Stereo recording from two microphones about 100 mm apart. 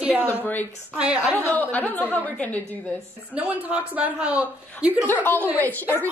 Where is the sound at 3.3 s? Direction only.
15° right (ahead or behind).